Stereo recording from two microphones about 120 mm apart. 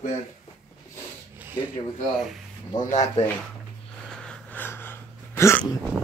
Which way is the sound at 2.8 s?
75° left (ahead or behind).